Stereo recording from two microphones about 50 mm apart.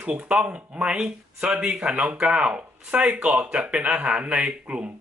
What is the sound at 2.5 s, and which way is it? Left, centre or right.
Speech, right.